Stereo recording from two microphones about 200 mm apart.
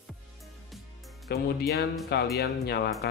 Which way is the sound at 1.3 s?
55° left (ahead or behind).